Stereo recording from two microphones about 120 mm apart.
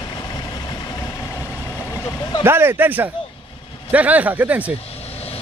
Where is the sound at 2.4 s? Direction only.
20° right (ahead or behind).